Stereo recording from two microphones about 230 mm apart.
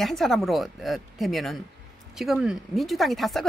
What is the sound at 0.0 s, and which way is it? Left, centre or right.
Speech, centre.